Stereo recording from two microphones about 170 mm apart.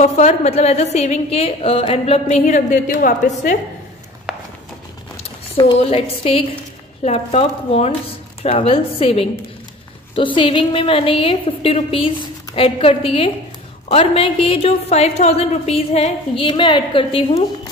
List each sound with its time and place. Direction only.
0.0 s a woman's voice: 40° left (ahead or behind)
2.4 s a woman's voice: 50° left (ahead or behind)
5.6 s a woman's voice: 30° left (ahead or behind)